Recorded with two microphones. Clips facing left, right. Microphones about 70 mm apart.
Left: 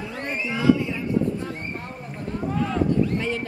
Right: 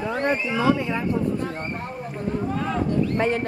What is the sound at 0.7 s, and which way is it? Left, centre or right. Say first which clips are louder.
Speech: right 2 dB; right.